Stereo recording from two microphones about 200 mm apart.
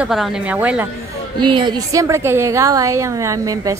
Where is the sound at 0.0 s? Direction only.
Centre (ahead or behind).